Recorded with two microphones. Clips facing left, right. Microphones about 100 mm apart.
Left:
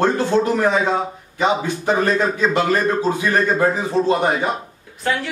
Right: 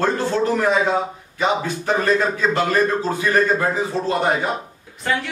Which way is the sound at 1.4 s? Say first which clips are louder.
Left 2 dB; 15° left (ahead or behind).